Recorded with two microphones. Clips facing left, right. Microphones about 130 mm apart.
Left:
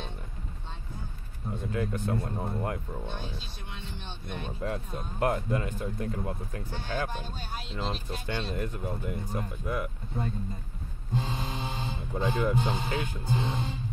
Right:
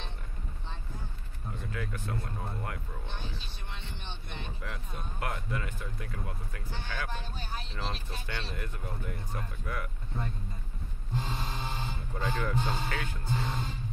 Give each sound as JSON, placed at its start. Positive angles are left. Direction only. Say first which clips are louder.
{"t": 1.6, "sound": "speech", "louder": "left 7 dB", "side_deg": 25}
{"t": 3.1, "sound": "speech", "louder": "left 2 dB", "side_deg": 15}
{"t": 4.4, "sound": "speech", "louder": "left 10 dB", "side_deg": 35}
{"t": 12.2, "sound": "speech", "louder": "left 5 dB", "side_deg": 15}